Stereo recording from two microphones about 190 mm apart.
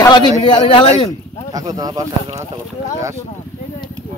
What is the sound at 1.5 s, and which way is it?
Speech, 20° right (ahead or behind).